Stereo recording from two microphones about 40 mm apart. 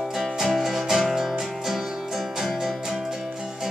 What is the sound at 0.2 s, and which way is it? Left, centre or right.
Music, centre.